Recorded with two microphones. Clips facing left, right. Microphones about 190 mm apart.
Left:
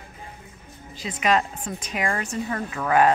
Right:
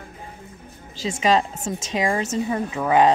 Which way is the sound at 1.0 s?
25° right (ahead or behind).